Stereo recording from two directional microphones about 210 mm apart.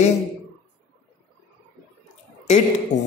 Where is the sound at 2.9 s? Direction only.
35° left (ahead or behind).